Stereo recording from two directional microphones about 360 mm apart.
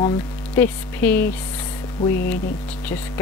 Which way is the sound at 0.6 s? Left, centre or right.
Centre.